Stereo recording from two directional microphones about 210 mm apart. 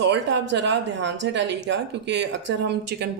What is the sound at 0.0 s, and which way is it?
Speech, 55° right (ahead or behind).